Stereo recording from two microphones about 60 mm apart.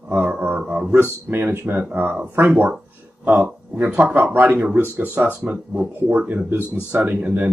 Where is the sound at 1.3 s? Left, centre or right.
Right.